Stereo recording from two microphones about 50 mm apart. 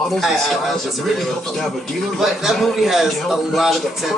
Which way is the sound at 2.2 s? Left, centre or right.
Centre.